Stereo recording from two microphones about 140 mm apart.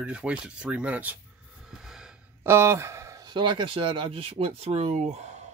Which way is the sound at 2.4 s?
15° right (ahead or behind).